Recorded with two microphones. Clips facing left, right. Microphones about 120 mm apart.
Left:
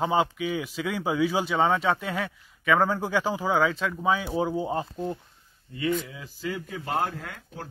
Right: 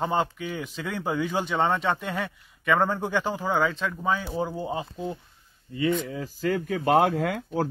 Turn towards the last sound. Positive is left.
turn(degrees=-85)